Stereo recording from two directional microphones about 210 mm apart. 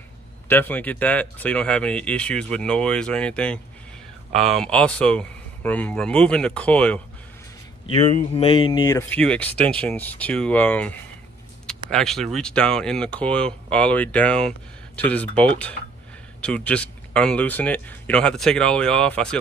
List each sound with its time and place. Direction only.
0.5 s speech: 10° left (ahead or behind)
7.8 s speech: 30° left (ahead or behind)
8.8 s speech: 10° left (ahead or behind)